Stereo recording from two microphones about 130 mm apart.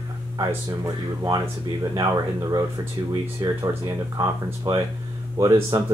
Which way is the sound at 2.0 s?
30° right (ahead or behind).